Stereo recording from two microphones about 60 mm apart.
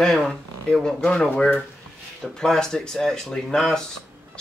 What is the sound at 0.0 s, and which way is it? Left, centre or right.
Speech, centre.